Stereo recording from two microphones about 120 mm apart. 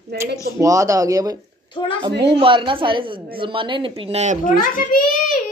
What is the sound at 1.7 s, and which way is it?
Speech, 40° left (ahead or behind).